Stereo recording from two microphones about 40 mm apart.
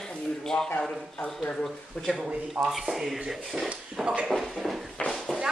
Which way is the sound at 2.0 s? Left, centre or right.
Centre.